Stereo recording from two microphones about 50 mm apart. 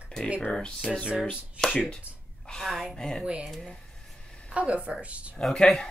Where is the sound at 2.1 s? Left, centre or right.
Right.